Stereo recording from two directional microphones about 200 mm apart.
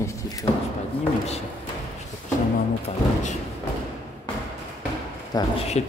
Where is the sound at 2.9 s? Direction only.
30° left (ahead or behind).